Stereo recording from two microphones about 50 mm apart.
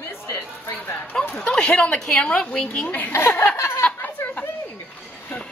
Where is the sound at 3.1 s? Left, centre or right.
Left.